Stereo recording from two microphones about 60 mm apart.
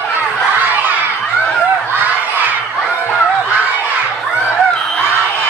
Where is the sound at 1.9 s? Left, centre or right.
Right.